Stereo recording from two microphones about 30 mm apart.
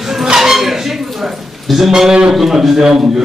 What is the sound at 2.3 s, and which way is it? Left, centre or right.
Speech, centre.